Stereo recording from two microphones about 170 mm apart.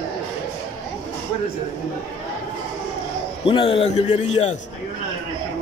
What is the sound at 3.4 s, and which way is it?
A man's voice, 30° left (ahead or behind).